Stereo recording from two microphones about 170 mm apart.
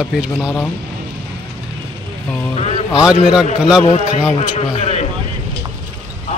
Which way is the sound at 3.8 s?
45° left (ahead or behind).